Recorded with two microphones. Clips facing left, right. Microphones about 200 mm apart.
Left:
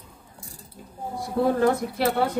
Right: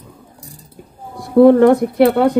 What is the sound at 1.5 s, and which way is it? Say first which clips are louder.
Speech: right 12 dB; 65° right (ahead or behind).